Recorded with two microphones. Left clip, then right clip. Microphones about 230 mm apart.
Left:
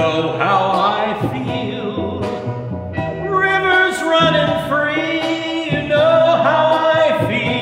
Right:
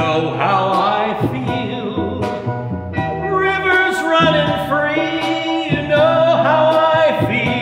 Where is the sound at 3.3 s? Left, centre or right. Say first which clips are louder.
Left 1 dB; centre.